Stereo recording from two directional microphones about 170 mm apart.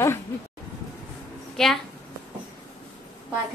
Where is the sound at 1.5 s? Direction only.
Centre (ahead or behind).